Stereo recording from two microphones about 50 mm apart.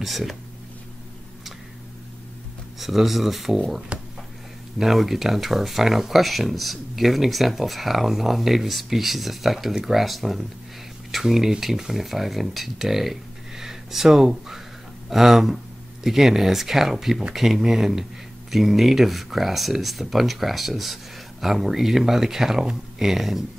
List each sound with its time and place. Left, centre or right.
0.0 s speech: centre
2.8 s speech: centre
3.9 s a sound: right
4.7 s speech: centre